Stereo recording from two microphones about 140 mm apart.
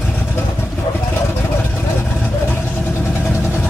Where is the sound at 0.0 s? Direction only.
10° left (ahead or behind).